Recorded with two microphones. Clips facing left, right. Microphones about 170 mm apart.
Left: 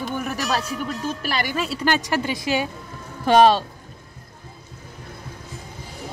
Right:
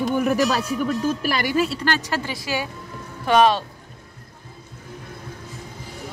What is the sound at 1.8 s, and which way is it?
Speech, 15° left (ahead or behind).